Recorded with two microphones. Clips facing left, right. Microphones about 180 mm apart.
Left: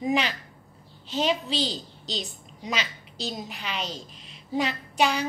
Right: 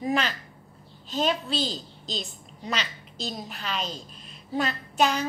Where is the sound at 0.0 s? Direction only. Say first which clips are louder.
Left 1 dB; 15° left (ahead or behind).